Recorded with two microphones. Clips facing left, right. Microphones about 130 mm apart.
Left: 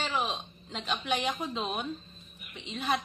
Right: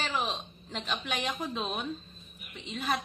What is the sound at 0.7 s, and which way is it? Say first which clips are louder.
A woman's voice: left 3 dB; centre (ahead or behind).